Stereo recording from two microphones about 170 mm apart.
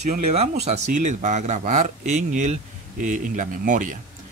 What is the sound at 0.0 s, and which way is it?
Speech, 40° right (ahead or behind).